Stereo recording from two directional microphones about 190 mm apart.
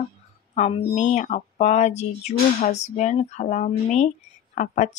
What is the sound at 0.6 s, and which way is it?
Speech, 35° left (ahead or behind).